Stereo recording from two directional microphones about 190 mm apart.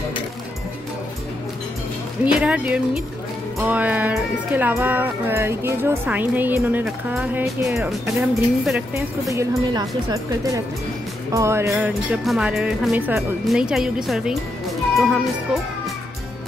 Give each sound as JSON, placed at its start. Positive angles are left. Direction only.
{"t": 2.4, "sound": "speech", "side_deg": -5}
{"t": 9.3, "sound": "speech", "side_deg": -15}
{"t": 11.7, "sound": "speech", "side_deg": -5}